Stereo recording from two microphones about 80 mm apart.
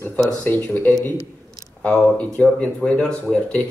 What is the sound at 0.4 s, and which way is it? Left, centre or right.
A man's voice, left.